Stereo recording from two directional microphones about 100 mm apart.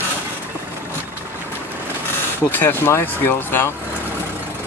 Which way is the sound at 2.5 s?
20° left (ahead or behind).